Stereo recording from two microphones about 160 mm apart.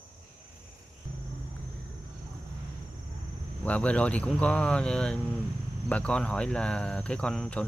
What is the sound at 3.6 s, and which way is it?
Speech, 10° left (ahead or behind).